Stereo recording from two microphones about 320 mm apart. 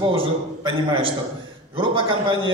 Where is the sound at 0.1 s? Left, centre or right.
Centre.